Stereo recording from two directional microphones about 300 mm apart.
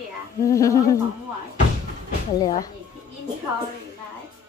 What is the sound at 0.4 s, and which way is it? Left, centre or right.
Speech, centre.